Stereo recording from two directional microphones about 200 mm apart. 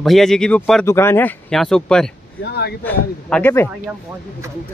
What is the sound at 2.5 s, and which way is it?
Speech, 55° left (ahead or behind).